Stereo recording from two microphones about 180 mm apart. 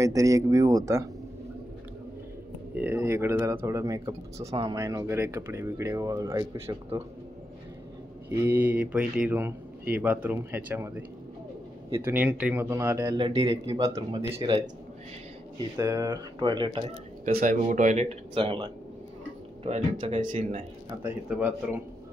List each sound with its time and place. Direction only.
0.0 s speech: 20° right (ahead or behind)
2.7 s speech: 10° right (ahead or behind)
8.5 s speech: 10° right (ahead or behind)
13.2 s speech: 30° right (ahead or behind)
15.8 s speech: 20° right (ahead or behind)
17.2 s speech: 50° right (ahead or behind); by 20.3 s 25° right (ahead or behind)
21.0 s speech: 10° right (ahead or behind)